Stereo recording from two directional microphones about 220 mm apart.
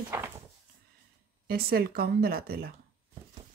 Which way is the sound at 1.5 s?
45° right (ahead or behind).